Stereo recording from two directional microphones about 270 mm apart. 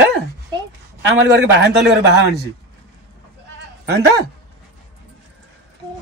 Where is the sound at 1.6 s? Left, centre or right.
Right.